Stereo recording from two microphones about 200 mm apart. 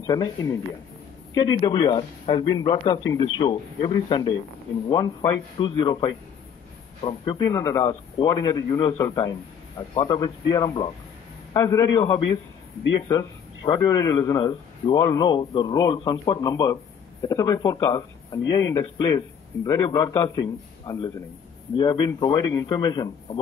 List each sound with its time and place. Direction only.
0.0 s speech: 20° left (ahead or behind)
1.6 s a man's voice: 20° left (ahead or behind)
13.1 s a man's voice: 20° left (ahead or behind)